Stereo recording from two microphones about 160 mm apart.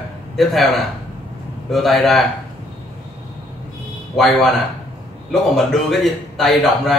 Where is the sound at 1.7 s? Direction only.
Centre (ahead or behind).